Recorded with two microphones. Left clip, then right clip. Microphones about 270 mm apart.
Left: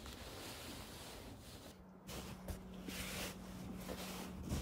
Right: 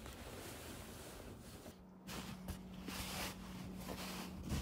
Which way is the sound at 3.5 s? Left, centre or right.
Centre.